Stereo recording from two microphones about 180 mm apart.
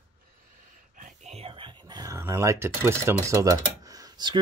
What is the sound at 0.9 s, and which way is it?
Speech, 45° right (ahead or behind).